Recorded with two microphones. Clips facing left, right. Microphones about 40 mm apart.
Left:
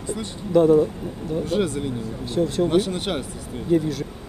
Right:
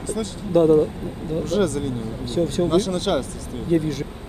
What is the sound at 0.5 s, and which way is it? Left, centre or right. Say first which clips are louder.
Speech: even; centre.